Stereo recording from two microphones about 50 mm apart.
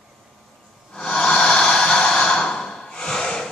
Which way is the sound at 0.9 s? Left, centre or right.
Centre.